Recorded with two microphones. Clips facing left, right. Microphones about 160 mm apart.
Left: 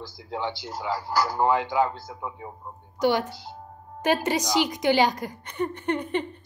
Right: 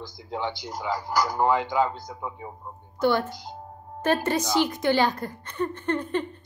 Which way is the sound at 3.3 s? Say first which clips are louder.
Right 2 dB; 15° right (ahead or behind).